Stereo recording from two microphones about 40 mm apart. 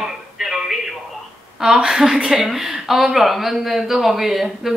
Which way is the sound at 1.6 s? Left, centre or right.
Centre.